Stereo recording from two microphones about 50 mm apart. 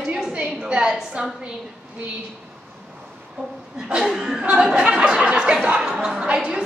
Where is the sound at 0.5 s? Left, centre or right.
Centre.